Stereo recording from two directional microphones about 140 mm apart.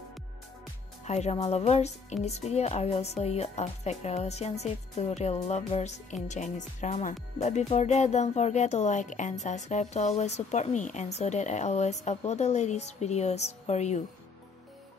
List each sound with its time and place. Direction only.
1.0 s speech: 50° left (ahead or behind)